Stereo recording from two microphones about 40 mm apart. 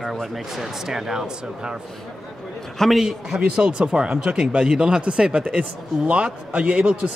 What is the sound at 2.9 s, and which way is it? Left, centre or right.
A man's voice, centre.